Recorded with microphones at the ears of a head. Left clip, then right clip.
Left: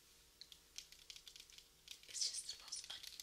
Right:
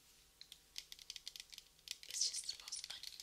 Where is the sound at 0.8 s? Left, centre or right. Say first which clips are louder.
Right 5 dB; right.